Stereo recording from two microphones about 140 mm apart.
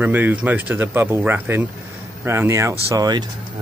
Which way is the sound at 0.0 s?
15° right (ahead or behind).